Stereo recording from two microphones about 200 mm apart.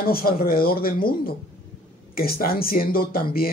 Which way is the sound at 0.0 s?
45° left (ahead or behind).